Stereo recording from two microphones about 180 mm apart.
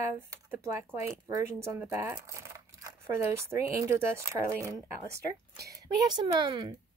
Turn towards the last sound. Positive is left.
turn(degrees=-25)  # may be behind; listen again after turning